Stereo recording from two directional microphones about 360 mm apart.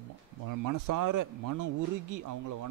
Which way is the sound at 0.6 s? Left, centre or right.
Right.